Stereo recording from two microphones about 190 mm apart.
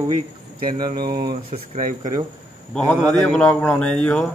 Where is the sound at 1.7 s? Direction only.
45° right (ahead or behind).